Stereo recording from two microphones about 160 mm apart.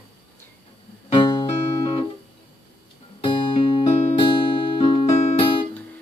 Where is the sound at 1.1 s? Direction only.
30° left (ahead or behind).